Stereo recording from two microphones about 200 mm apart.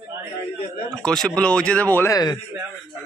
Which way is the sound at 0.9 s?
5° left (ahead or behind).